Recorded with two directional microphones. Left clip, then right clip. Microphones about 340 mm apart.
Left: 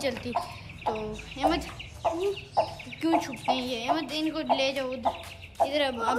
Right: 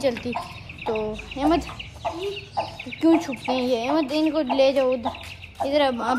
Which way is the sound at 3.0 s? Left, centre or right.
Centre.